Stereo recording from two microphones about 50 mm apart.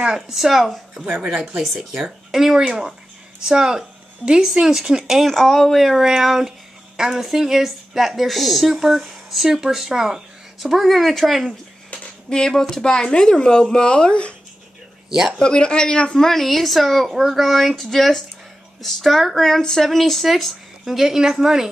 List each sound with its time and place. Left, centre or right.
0.0 s a woman's voice: centre
5.3 s a woman's voice: centre
11.9 s speech: centre
15.0 s speech: centre
15.3 s a woman's voice: centre